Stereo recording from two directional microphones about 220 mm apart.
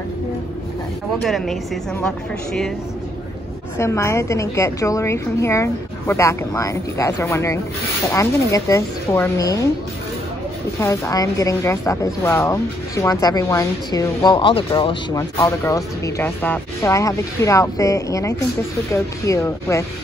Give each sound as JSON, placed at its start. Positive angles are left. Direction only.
{"t": 1.2, "sound": "a woman's voice", "side_deg": 0}
{"t": 3.7, "sound": "a woman's voice", "side_deg": 10}
{"t": 10.8, "sound": "a woman's voice", "side_deg": 15}